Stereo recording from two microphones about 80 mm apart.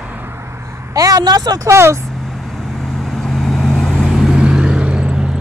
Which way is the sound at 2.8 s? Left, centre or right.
Centre.